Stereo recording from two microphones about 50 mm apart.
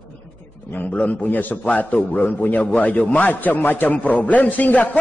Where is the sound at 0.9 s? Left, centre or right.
Left.